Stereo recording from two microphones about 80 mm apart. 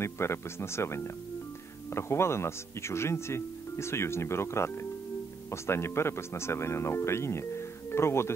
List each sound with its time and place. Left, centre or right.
0.0 s a man's voice: left